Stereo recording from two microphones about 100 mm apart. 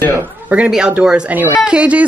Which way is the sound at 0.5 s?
10° right (ahead or behind).